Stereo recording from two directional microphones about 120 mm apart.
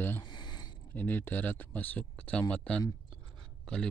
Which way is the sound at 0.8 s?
15° left (ahead or behind).